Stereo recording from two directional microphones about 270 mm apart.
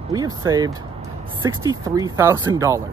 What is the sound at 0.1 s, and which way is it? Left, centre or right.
Speech, centre.